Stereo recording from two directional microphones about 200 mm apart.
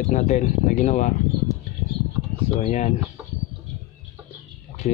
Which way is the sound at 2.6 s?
35° left (ahead or behind).